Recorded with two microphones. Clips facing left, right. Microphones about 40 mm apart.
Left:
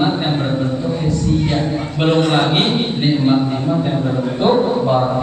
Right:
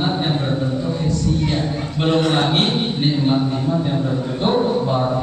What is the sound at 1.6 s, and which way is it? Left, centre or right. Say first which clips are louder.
A man's voice: left 3 dB; left.